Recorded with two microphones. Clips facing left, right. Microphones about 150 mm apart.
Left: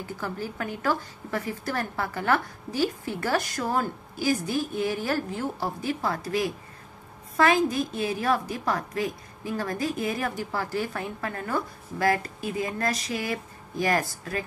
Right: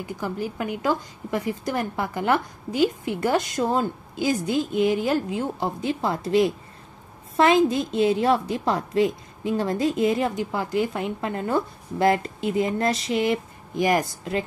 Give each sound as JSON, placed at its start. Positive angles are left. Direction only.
{"t": 0.0, "sound": "a woman's voice", "side_deg": -15}